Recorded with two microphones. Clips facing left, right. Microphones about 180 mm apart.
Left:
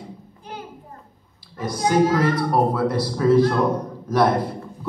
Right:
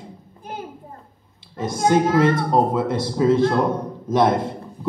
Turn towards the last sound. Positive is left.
turn(degrees=-25)  # may be behind; listen again after turning